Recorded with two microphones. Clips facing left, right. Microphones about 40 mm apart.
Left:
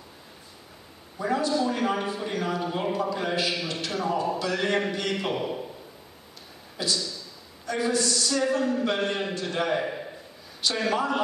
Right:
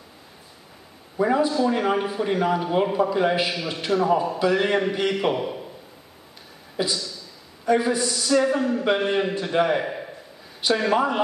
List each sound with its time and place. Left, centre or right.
1.2 s a man's voice: centre
5.1 s a man's voice: centre
6.8 s a man's voice: right